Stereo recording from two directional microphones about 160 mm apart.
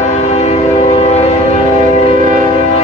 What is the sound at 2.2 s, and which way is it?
Train, 55° right (ahead or behind).